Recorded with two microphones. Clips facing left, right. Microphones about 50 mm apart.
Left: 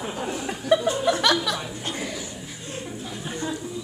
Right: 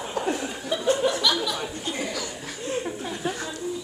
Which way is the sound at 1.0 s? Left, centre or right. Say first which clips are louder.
Left 2 dB; left.